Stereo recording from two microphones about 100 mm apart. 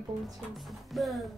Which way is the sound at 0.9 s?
Centre (ahead or behind).